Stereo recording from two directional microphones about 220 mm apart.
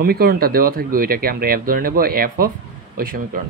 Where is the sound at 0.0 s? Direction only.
45° right (ahead or behind).